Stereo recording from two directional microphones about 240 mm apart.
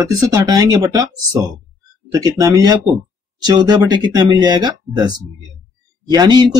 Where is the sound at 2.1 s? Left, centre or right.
Centre.